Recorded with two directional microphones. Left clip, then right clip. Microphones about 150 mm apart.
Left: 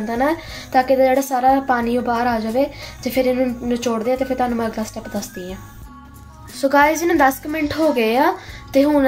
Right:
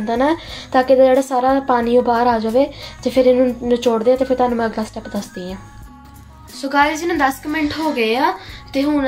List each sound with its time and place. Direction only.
0.0 s a woman's voice: 15° right (ahead or behind)
6.6 s a woman's voice: 35° left (ahead or behind)